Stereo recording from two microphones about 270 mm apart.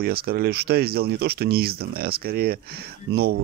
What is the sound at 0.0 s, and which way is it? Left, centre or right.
Speech, right.